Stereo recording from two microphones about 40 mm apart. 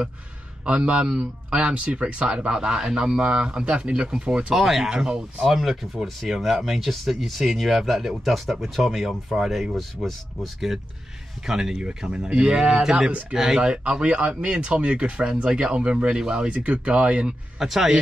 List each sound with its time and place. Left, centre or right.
0.7 s speech: right
1.6 s speech: right
4.6 s speech: centre
4.8 s speech: centre
5.4 s speech: centre
11.4 s speech: centre
13.8 s speech: right
16.4 s speech: right
17.6 s speech: centre